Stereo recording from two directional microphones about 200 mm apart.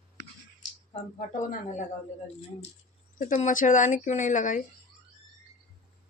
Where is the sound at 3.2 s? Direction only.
40° left (ahead or behind).